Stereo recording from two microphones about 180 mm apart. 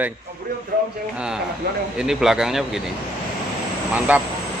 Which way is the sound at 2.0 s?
5° right (ahead or behind).